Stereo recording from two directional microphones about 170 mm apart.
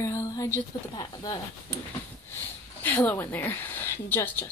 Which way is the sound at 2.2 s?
10° left (ahead or behind).